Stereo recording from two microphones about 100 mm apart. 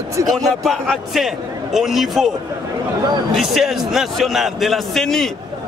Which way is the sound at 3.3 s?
5° right (ahead or behind).